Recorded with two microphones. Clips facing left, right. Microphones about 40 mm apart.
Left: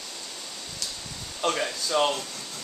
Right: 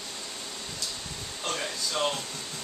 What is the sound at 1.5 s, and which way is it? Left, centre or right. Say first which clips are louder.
Speech: left 5 dB; left.